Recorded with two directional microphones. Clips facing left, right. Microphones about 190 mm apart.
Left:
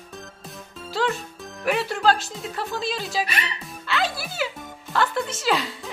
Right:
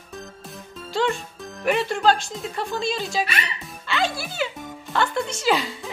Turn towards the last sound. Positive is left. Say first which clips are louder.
# right 2 dB
turn(degrees=0)  # may be behind; listen again after turning